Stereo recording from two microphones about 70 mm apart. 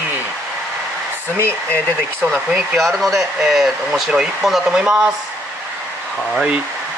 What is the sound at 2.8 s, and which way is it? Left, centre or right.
Speech, centre.